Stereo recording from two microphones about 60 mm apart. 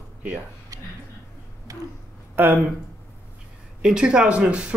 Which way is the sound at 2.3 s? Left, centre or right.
Right.